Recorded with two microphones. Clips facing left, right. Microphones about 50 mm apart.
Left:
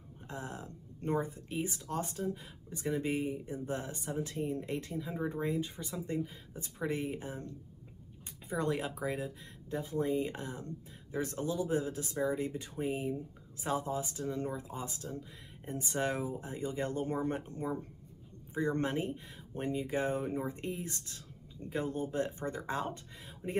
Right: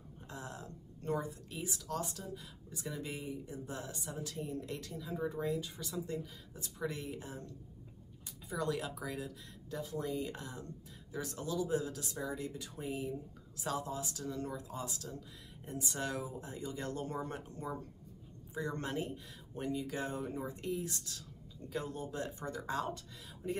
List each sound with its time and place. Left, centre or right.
0.3 s speech: left